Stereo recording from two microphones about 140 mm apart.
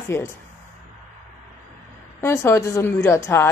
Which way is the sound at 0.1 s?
20° left (ahead or behind).